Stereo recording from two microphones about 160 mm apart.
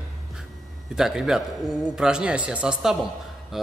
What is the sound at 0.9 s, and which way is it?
A man's voice, 5° right (ahead or behind).